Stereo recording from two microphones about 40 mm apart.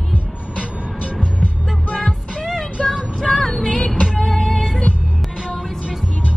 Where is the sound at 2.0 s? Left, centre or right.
Centre.